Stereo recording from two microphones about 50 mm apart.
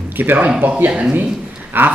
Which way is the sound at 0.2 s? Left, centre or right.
Right.